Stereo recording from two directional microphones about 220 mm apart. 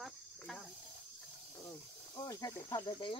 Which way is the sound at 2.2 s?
15° left (ahead or behind).